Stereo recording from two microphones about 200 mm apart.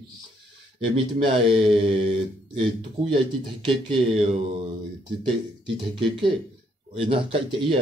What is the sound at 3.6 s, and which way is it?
Speech, 25° right (ahead or behind).